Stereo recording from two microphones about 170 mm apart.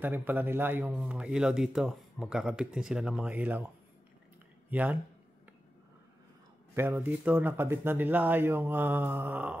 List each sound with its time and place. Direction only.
0.0 s speech: 10° right (ahead or behind)
6.7 s speech: 15° right (ahead or behind)